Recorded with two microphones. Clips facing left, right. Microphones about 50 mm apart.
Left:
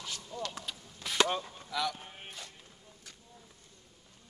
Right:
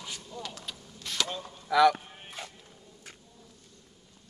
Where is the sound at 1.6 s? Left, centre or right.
Right.